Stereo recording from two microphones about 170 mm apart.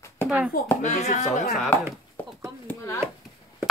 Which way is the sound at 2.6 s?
15° left (ahead or behind).